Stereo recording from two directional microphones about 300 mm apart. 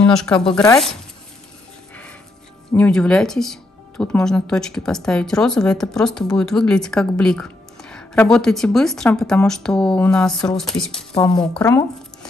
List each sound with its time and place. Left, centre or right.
0.1 s speech: centre
2.7 s speech: centre